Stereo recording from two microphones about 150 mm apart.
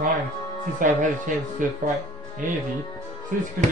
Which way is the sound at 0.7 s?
60° right (ahead or behind).